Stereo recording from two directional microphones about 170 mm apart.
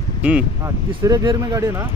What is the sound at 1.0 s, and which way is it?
Speech, 20° right (ahead or behind).